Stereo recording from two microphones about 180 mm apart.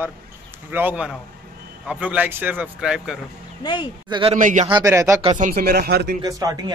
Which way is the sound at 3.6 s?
25° left (ahead or behind).